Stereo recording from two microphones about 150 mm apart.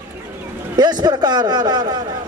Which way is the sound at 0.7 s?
30° right (ahead or behind).